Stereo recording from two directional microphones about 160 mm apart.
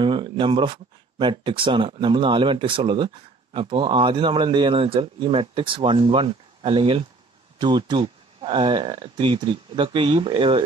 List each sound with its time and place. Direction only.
0.0 s a man's voice: 30° right (ahead or behind)